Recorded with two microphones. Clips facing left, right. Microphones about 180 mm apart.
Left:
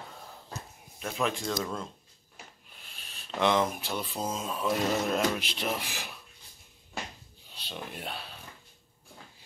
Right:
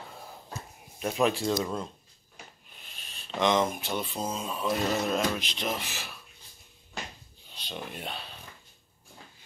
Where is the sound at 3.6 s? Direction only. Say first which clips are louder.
Right 1 dB; centre (ahead or behind).